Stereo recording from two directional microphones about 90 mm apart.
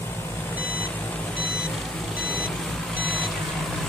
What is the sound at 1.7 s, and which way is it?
Vehicle, 5° left (ahead or behind).